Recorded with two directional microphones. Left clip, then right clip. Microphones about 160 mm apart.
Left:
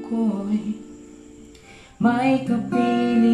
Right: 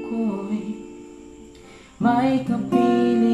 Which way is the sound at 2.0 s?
Centre (ahead or behind).